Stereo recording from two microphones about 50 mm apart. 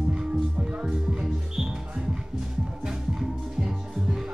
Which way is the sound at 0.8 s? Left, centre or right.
Centre.